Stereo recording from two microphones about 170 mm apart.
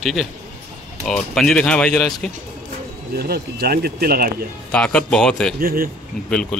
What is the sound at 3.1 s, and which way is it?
Speech, 65° right (ahead or behind).